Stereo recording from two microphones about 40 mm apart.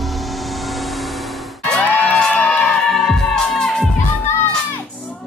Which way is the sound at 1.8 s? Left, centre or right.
Left.